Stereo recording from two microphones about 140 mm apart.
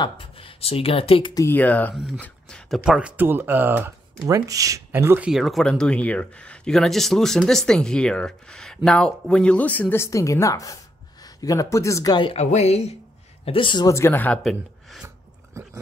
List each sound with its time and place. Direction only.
0.0 s speech: 40° left (ahead or behind)
1.3 s speech: 20° left (ahead or behind)
2.1 s a sound: 10° left (ahead or behind)
2.8 s speech: 5° right (ahead or behind)
5.3 s speech: centre (ahead or behind); by 12.4 s 30° left (ahead or behind)
12.4 s speech: 50° left (ahead or behind)
13.5 s a man's voice: 35° left (ahead or behind)
13.8 s speech: 20° left (ahead or behind); by 15.0 s centre (ahead or behind)